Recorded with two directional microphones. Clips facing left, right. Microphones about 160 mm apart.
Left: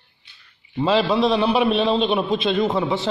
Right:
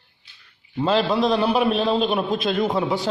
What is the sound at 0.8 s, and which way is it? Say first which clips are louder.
A man's voice: left 1 dB; centre (ahead or behind).